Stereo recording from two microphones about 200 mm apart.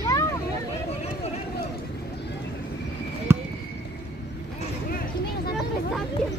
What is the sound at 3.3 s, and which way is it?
Basketball bounce, 10° right (ahead or behind).